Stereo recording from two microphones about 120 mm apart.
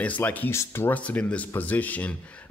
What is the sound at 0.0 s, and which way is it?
A man's voice, 15° left (ahead or behind).